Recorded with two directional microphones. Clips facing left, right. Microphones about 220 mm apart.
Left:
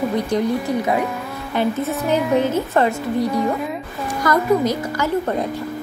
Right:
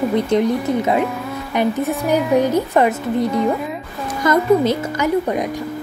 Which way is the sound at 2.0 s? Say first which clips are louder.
Right 2 dB; 10° right (ahead or behind).